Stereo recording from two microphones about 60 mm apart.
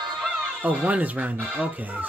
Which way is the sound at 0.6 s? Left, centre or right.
Right.